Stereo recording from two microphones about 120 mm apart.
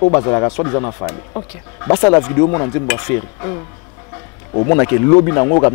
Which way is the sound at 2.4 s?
25° left (ahead or behind).